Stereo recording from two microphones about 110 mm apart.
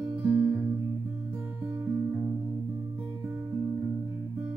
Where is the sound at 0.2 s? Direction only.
15° right (ahead or behind).